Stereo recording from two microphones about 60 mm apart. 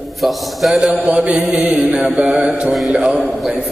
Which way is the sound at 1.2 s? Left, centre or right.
Centre.